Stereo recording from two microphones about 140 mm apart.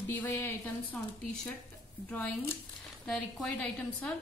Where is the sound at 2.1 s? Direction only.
10° left (ahead or behind).